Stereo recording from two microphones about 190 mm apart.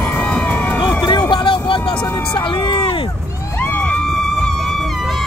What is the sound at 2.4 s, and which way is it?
Run, 25° left (ahead or behind).